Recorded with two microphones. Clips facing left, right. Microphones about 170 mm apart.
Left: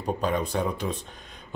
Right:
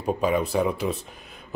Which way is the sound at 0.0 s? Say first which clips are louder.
Right 3 dB; 5° right (ahead or behind).